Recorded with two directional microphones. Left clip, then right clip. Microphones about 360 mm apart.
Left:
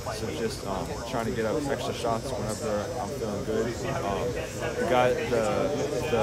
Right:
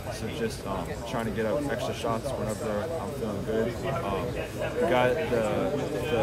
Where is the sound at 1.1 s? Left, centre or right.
Centre.